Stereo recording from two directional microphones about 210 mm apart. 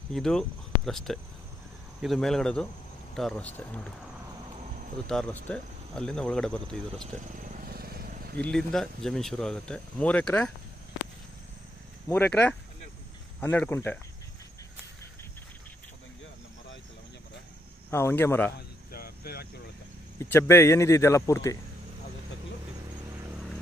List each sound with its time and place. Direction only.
0.1 s speech: 5° left (ahead or behind)
5.0 s speech: 5° left (ahead or behind)
7.3 s vehicle: 40° right (ahead or behind)
8.4 s speech: 5° left (ahead or behind)
12.1 s speech: 10° left (ahead or behind)
17.8 s speech: 10° left (ahead or behind)
18.9 s cricket: 45° left (ahead or behind)
20.2 s speech: 10° left (ahead or behind)